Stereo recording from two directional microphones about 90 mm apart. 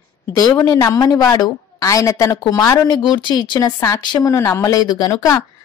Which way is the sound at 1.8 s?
35° left (ahead or behind).